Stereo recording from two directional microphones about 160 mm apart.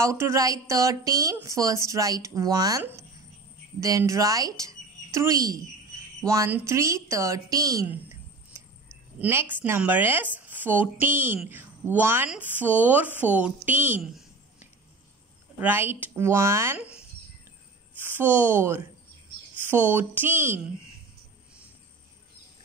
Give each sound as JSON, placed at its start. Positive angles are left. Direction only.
{"t": 0.0, "sound": "a woman's voice", "side_deg": -15}
{"t": 15.6, "sound": "speech", "side_deg": -15}
{"t": 18.0, "sound": "speech", "side_deg": -10}